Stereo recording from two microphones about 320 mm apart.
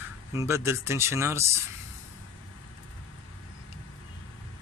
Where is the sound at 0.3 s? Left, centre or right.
Centre.